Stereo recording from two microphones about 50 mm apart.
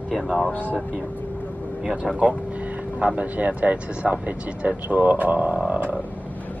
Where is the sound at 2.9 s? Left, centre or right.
Right.